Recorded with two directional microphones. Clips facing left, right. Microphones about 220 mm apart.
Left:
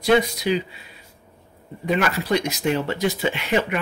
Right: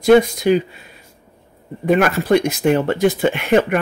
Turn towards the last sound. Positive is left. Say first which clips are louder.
# right 7 dB
turn(degrees=-50)  # may be behind; listen again after turning